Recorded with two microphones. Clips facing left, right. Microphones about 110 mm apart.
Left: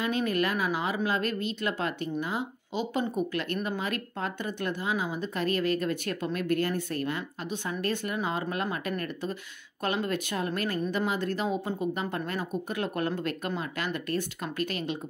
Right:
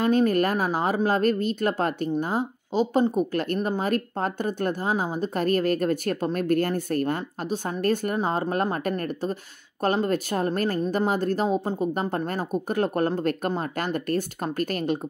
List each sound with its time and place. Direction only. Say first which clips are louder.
0.0 s speech: right 7 dB; 45° right (ahead or behind)